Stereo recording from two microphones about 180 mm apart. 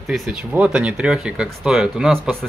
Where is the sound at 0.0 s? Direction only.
Centre (ahead or behind).